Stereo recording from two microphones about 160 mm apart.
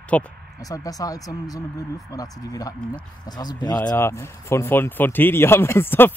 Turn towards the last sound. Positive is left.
turn(degrees=15)  # may be behind; listen again after turning